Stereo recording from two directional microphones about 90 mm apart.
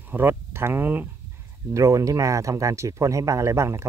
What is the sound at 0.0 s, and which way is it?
Speech, 25° right (ahead or behind).